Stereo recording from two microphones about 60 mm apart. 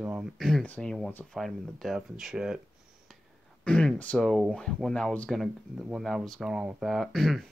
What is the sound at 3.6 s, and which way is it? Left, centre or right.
Speech, centre.